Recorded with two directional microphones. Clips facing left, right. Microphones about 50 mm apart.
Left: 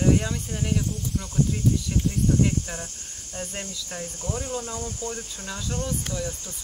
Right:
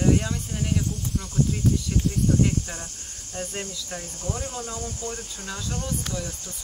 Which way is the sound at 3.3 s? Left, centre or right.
Centre.